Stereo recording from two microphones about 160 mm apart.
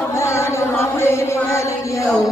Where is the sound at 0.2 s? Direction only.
15° left (ahead or behind).